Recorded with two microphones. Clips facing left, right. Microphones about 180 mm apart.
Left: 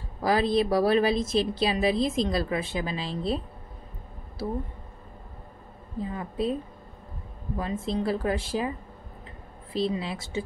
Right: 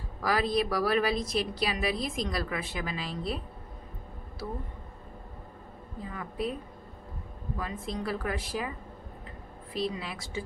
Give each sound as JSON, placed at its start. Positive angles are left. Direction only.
{"t": 0.2, "sound": "a woman's voice", "side_deg": 25}
{"t": 6.1, "sound": "a woman's voice", "side_deg": 25}
{"t": 7.5, "sound": "a woman's voice", "side_deg": 25}
{"t": 9.8, "sound": "a woman's voice", "side_deg": 25}